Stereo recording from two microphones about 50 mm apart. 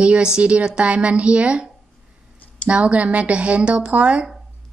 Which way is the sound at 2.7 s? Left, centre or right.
Right.